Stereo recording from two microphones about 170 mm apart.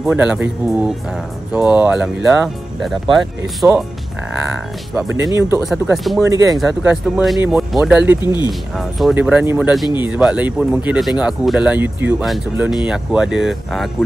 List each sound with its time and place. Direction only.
0.0 s speech: 5° right (ahead or behind)
4.9 s speech: 5° right (ahead or behind)
5.3 s speech: 15° right (ahead or behind)
6.6 s speech: 5° right (ahead or behind)
8.2 s speech: 25° left (ahead or behind)
8.5 s speech: centre (ahead or behind)